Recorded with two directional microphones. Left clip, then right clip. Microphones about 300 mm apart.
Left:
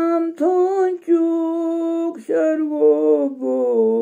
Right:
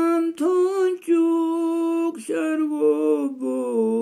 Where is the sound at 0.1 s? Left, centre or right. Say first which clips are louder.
Left 3 dB; centre.